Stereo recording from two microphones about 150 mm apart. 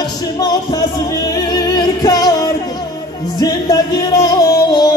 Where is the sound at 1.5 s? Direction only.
25° left (ahead or behind).